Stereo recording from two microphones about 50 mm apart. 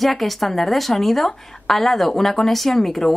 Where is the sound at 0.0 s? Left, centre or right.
Centre.